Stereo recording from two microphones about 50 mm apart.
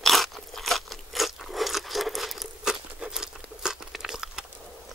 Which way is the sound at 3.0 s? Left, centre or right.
Centre.